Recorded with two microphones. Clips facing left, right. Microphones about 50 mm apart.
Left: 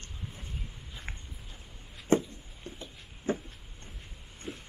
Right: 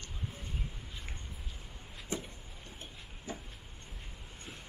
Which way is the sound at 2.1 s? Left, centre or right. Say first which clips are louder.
Left 14 dB; left.